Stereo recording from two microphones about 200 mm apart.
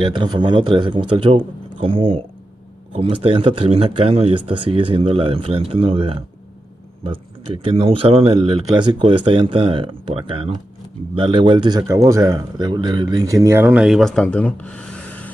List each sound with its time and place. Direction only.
0.0 s a man's voice: 25° right (ahead or behind); by 15.3 s 5° left (ahead or behind)